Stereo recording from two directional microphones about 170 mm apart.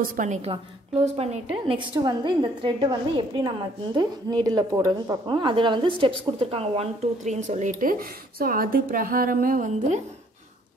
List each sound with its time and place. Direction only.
0.0 s a woman's voice: 55° right (ahead or behind)